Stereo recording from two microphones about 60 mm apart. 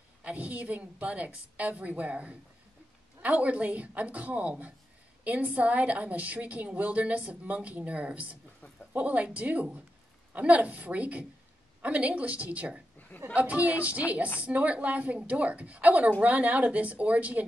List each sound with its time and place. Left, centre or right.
0.2 s a woman's voice: right